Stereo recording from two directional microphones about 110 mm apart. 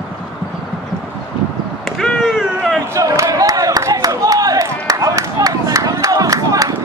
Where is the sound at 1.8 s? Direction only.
Centre (ahead or behind).